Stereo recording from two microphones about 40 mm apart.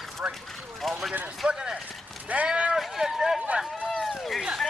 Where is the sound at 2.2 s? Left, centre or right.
Right.